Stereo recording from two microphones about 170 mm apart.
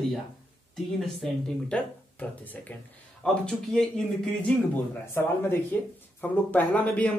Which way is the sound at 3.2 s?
5° left (ahead or behind).